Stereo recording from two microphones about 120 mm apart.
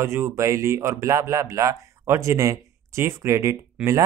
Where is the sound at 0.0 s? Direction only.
20° right (ahead or behind).